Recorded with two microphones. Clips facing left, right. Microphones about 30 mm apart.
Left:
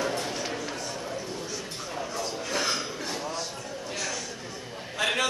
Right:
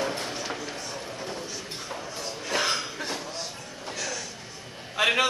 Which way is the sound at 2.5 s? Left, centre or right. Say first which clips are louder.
Right 3 dB; right.